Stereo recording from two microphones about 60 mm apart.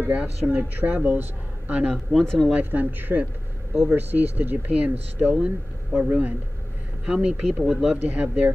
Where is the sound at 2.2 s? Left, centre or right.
Centre.